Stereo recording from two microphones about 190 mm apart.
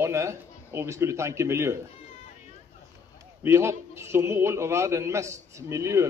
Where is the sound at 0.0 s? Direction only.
15° right (ahead or behind).